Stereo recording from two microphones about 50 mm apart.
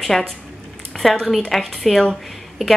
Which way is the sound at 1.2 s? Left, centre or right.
Centre.